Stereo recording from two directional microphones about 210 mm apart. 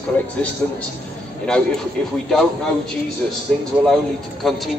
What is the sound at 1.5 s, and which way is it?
Speech, 5° left (ahead or behind).